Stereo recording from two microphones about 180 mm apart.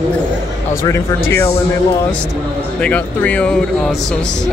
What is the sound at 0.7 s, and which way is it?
Speech, 15° left (ahead or behind).